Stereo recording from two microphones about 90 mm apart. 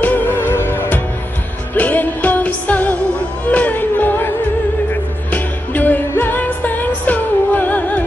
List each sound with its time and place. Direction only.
0.0 s music: 20° left (ahead or behind)
5.3 s music: 20° left (ahead or behind)